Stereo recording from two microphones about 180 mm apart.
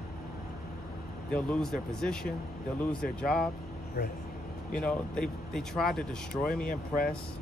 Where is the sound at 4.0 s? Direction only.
60° left (ahead or behind).